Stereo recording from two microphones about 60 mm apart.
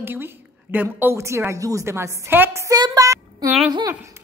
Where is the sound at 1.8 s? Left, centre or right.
Right.